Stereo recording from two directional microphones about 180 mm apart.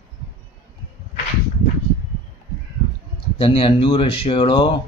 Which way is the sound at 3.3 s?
30° left (ahead or behind).